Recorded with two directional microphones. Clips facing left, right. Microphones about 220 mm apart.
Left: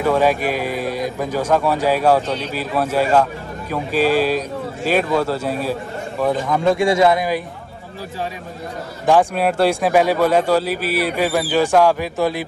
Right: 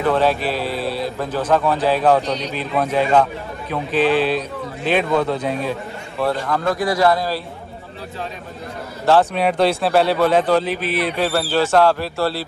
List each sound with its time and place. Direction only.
0.0 s a man's voice: 10° left (ahead or behind)
6.7 s speech: 25° left (ahead or behind)
9.0 s a man's voice: 15° left (ahead or behind)